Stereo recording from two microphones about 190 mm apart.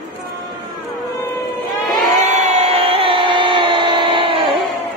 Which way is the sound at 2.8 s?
30° right (ahead or behind).